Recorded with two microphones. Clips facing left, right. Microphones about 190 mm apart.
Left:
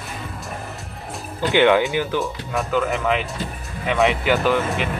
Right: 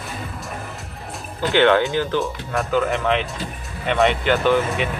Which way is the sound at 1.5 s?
15° left (ahead or behind).